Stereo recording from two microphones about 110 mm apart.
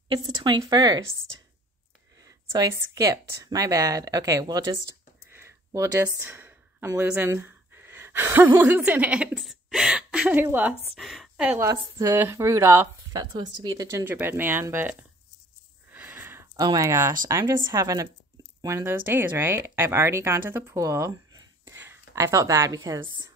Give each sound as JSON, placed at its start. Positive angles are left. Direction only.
{"t": 0.1, "sound": "speech", "side_deg": -45}
{"t": 2.1, "sound": "speech", "side_deg": -35}
{"t": 9.4, "sound": "a sound", "side_deg": 0}
{"t": 10.4, "sound": "a woman's voice", "side_deg": -15}
{"t": 10.9, "sound": "a woman's voice", "side_deg": 0}
{"t": 11.5, "sound": "speech", "side_deg": -30}
{"t": 14.0, "sound": "speech", "side_deg": -20}
{"t": 15.9, "sound": "a sound", "side_deg": -15}
{"t": 16.5, "sound": "speech", "side_deg": -35}
{"t": 17.6, "sound": "speech", "side_deg": -35}
{"t": 18.9, "sound": "speech", "side_deg": -20}
{"t": 21.7, "sound": "a sound", "side_deg": -25}
{"t": 22.8, "sound": "a woman's voice", "side_deg": -45}